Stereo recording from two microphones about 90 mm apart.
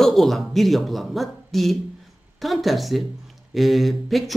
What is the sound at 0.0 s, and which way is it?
Speech, centre (ahead or behind).